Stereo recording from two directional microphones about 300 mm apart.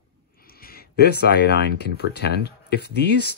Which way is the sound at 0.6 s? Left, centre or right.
Left.